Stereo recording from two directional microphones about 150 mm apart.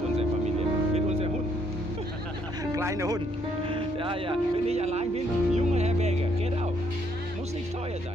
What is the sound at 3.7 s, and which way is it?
Speech, 35° right (ahead or behind).